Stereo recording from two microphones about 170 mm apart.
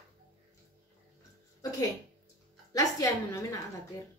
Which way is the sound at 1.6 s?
20° left (ahead or behind).